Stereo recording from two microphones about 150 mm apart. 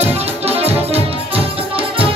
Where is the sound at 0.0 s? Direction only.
45° right (ahead or behind).